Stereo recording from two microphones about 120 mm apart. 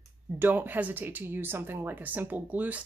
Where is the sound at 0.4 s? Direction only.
15° right (ahead or behind).